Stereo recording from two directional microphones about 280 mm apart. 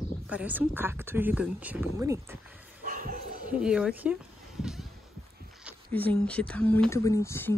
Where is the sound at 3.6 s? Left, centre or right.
Centre.